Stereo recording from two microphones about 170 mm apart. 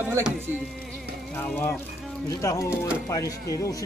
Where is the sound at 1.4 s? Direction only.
10° left (ahead or behind).